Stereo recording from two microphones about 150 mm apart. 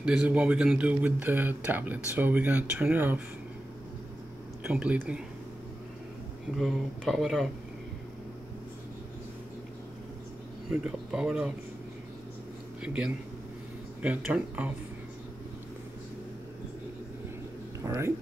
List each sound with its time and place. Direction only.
0.0 s speech: 10° right (ahead or behind)
4.6 s speech: 5° right (ahead or behind)
6.5 s speech: centre (ahead or behind)
10.7 s speech: 5° right (ahead or behind)
12.8 s speech: 5° right (ahead or behind)
17.8 s speech: 20° right (ahead or behind)